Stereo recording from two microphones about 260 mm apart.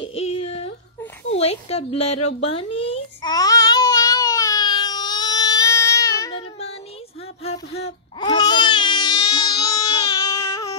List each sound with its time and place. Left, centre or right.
0.0 s a sound: left
1.4 s speech: left
2.0 s speech: left
2.8 s baby cry: centre
7.4 s baby cry: left